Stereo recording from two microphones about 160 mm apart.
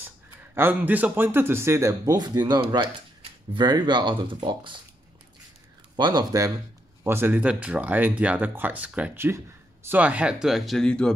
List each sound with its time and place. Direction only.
0.6 s speech: 10° right (ahead or behind); by 4.7 s 30° right (ahead or behind)
5.9 s speech: 25° right (ahead or behind); by 11.1 s 5° left (ahead or behind)